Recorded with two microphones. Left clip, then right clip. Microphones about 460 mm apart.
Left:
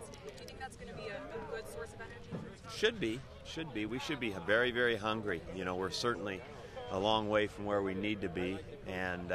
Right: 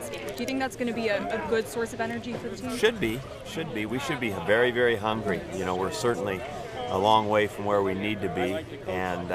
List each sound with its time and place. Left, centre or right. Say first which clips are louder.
2.7 s speech: right 8 dB; centre